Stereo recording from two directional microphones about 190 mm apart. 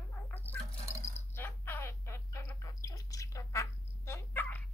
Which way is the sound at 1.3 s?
10° left (ahead or behind).